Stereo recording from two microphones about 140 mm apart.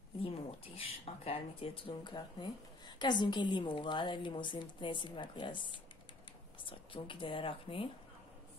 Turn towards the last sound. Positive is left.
turn(degrees=40)  # may be behind; listen again after turning